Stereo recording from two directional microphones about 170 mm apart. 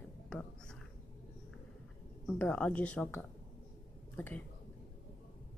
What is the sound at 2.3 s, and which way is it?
Speech, 10° left (ahead or behind).